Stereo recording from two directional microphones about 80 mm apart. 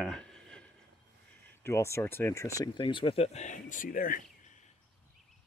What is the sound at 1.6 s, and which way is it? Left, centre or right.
Speech, left.